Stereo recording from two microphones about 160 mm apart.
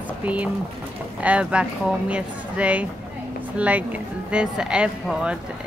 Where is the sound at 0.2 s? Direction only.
10° right (ahead or behind).